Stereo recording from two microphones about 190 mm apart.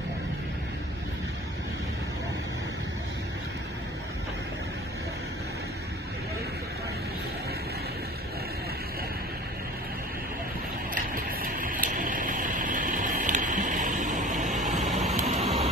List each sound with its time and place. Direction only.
11.0 s vehicle: 45° right (ahead or behind)